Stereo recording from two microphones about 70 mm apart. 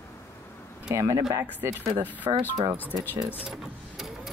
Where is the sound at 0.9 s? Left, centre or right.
Right.